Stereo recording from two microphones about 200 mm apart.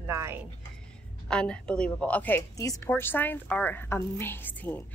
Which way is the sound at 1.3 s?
5° left (ahead or behind).